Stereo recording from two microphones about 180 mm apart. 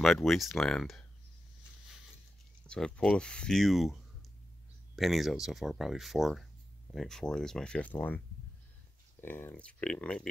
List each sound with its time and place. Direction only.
0.0 s speech: centre (ahead or behind)
2.6 s speech: 5° left (ahead or behind)
4.9 s speech: centre (ahead or behind)
9.2 s speech: 10° left (ahead or behind)